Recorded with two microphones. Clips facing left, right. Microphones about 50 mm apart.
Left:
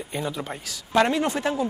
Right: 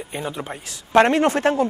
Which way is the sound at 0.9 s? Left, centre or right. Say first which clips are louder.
Right 6 dB; right.